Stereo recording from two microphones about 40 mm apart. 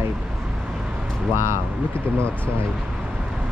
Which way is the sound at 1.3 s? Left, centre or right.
Right.